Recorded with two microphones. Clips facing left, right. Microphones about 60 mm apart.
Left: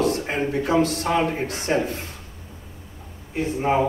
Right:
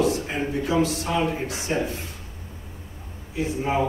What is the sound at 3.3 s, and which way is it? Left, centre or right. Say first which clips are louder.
Speech: left 3 dB; left.